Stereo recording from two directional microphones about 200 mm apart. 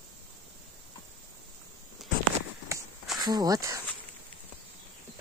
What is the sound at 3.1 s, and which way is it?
Speech, 20° right (ahead or behind).